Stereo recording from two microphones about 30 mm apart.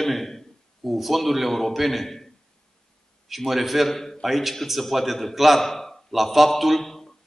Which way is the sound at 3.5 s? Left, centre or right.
Centre.